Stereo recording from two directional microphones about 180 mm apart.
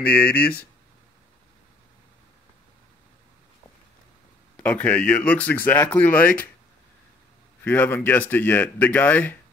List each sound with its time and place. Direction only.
0.0 s speech: 60° left (ahead or behind)
4.6 s speech: 5° left (ahead or behind)
7.6 s speech: 10° left (ahead or behind)